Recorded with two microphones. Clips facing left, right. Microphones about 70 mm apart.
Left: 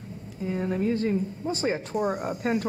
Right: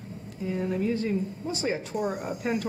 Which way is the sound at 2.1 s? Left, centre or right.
Centre.